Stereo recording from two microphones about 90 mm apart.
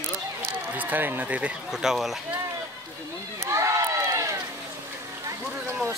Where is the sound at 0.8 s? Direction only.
20° right (ahead or behind).